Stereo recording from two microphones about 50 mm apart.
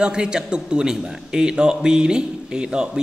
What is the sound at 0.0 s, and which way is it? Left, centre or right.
A man's voice, centre.